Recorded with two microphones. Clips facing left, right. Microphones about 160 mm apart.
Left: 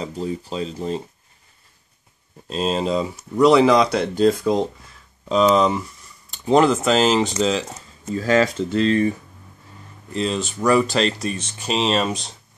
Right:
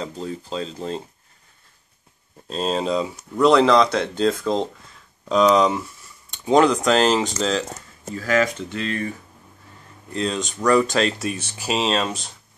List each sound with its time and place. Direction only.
0.0 s speech: 10° left (ahead or behind)
2.5 s speech: 5° left (ahead or behind)
8.1 s speech: 30° left (ahead or behind)
10.1 s speech: centre (ahead or behind)